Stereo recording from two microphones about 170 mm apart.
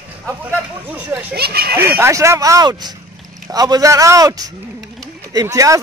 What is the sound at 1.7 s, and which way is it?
A man's voice, 15° right (ahead or behind).